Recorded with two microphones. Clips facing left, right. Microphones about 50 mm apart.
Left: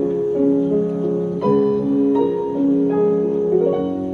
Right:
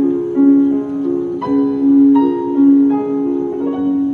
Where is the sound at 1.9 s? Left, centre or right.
Right.